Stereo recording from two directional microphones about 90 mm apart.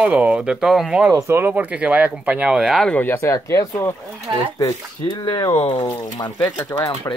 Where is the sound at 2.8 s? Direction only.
20° left (ahead or behind).